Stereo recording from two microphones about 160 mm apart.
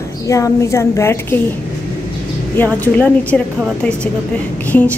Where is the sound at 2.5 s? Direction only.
10° left (ahead or behind).